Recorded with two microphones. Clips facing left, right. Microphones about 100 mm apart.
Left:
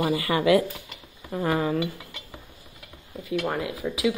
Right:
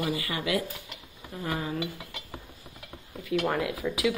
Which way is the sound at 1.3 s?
60° left (ahead or behind).